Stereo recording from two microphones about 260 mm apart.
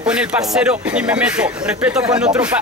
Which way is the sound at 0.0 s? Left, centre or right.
Centre.